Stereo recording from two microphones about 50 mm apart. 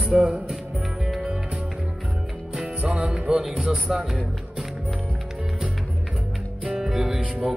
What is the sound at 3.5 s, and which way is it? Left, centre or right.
Speech, centre.